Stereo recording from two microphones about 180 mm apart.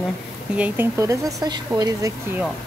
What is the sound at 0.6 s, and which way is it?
Speech, 10° right (ahead or behind).